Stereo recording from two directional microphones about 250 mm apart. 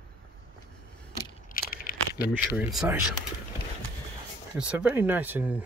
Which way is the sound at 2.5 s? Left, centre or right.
Centre.